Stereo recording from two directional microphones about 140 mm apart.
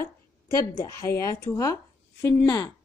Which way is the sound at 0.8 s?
20° left (ahead or behind).